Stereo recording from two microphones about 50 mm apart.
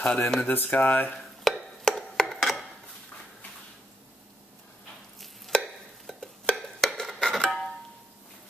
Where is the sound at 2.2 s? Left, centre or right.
Centre.